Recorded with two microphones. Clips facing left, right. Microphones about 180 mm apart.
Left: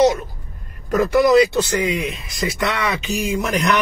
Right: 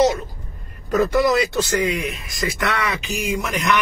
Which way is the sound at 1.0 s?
15° left (ahead or behind).